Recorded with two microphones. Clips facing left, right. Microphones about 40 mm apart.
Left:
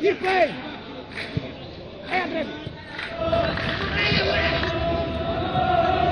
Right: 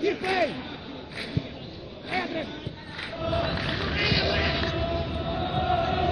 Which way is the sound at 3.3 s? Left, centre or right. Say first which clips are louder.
Left 5 dB; centre.